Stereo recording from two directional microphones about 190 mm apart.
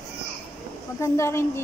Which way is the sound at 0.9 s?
15° left (ahead or behind).